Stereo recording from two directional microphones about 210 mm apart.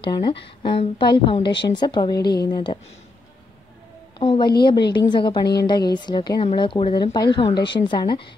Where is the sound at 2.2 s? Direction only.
50° left (ahead or behind).